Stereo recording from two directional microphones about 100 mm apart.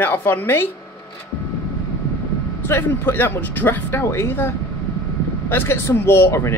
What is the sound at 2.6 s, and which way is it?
Speech, 25° left (ahead or behind).